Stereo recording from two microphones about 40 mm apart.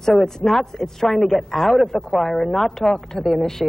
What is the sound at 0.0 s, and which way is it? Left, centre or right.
Speech, centre.